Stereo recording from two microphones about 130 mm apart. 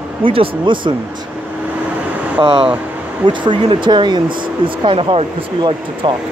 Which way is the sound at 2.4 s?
45° right (ahead or behind).